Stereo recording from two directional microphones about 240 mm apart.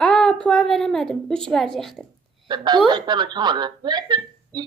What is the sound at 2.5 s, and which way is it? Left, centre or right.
A woman's voice, centre.